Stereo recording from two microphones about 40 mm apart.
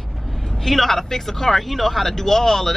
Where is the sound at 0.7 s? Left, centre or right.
Centre.